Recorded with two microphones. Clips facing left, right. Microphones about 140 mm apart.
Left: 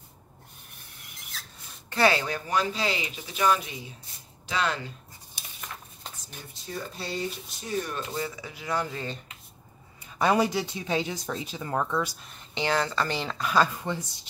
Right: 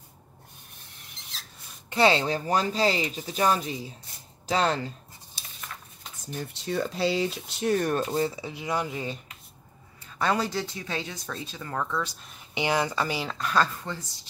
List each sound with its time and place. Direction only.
1.9 s speech: 20° right (ahead or behind)
6.4 s speech: 85° right; by 8.0 s 60° right (ahead or behind)
8.1 s speech: 30° right (ahead or behind); by 9.2 s 10° right (ahead or behind)
10.0 s speech: 15° left (ahead or behind)
12.2 s speech: centre (ahead or behind)
12.5 s speech: 15° right (ahead or behind); by 13.7 s 5° left (ahead or behind)
13.7 s speech: 15° left (ahead or behind)